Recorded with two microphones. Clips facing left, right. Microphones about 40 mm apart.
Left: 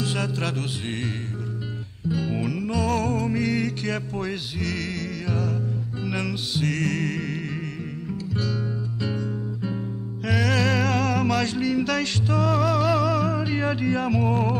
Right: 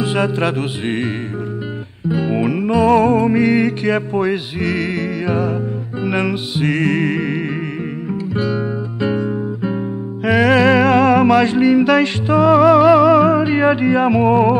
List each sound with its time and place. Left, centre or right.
0.0 s music: right
8.1 s guitar: right